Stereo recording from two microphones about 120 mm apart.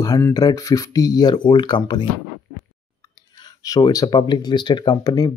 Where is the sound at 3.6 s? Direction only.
30° left (ahead or behind).